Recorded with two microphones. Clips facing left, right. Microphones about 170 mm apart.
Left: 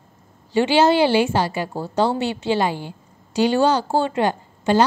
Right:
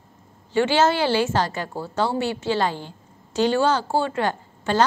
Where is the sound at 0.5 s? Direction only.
15° left (ahead or behind).